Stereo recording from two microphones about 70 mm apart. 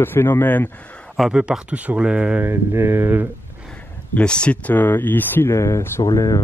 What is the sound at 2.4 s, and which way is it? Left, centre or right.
Speech, right.